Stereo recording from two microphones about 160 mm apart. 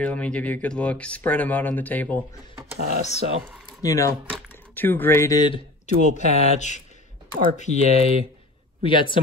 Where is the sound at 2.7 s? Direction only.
65° right (ahead or behind).